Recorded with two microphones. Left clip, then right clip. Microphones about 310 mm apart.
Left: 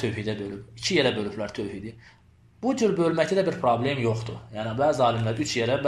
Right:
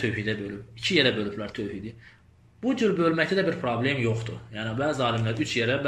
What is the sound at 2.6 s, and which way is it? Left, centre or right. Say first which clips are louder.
Speech: left 1 dB; centre.